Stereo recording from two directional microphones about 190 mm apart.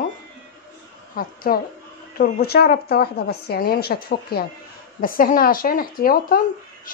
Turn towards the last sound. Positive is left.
turn(degrees=50)  # may be behind; listen again after turning